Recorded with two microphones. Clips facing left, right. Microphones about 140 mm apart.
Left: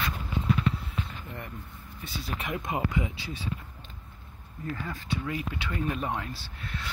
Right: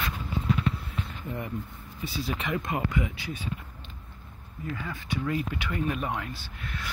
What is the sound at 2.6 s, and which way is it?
Speech, 20° left (ahead or behind).